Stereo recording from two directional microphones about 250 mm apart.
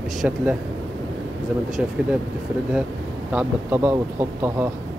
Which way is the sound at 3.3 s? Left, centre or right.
Centre.